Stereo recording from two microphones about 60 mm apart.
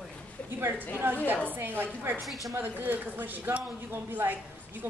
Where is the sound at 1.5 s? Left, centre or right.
Right.